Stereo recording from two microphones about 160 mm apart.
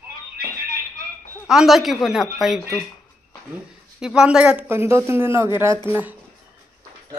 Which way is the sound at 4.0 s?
5° right (ahead or behind).